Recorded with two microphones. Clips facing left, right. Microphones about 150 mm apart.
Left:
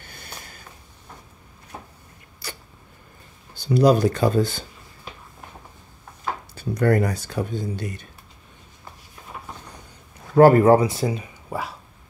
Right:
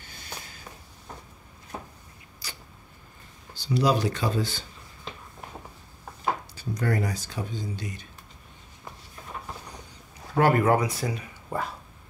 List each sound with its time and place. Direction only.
0.0 s a sound: 55° left (ahead or behind)
2.4 s a sound: 60° left (ahead or behind)
3.5 s speech: 50° left (ahead or behind)
6.5 s speech: 60° left (ahead or behind)
10.3 s speech: 35° left (ahead or behind)
11.5 s speech: 10° left (ahead or behind)